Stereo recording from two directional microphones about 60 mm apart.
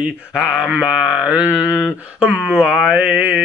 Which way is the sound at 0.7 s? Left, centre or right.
Centre.